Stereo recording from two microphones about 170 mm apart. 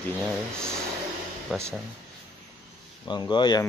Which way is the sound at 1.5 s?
Centre (ahead or behind).